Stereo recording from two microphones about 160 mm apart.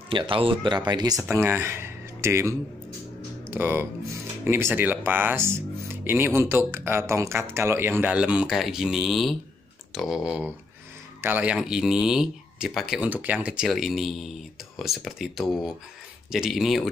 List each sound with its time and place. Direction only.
0.1 s speech: 30° right (ahead or behind)
1.3 s a man's voice: 15° right (ahead or behind); by 16.9 s centre (ahead or behind)